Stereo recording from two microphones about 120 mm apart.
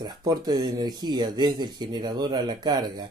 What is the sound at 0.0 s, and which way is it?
Speech, 35° right (ahead or behind).